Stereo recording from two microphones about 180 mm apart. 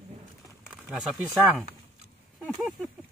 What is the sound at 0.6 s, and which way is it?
Speech, 5° right (ahead or behind).